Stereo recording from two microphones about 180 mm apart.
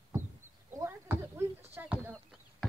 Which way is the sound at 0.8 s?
15° right (ahead or behind).